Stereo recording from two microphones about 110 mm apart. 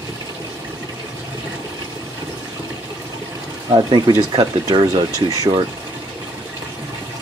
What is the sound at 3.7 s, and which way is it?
Speech, 40° right (ahead or behind).